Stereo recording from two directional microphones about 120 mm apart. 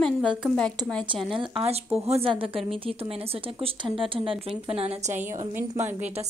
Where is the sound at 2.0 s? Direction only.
60° right (ahead or behind).